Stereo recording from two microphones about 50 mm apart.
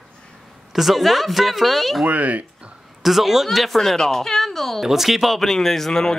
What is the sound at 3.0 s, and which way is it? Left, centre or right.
Speech, centre.